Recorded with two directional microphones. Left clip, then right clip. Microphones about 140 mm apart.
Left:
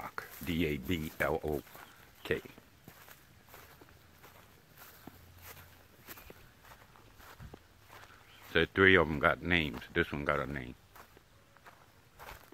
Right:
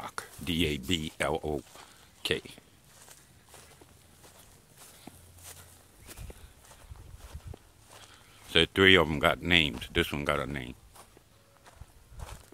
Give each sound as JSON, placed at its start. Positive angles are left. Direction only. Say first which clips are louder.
{"t": 0.0, "sound": "speech", "louder": "right 3 dB", "side_deg": -20}
{"t": 8.5, "sound": "speech", "louder": "right 4 dB", "side_deg": -25}
{"t": 12.2, "sound": "walk", "louder": "even", "side_deg": 20}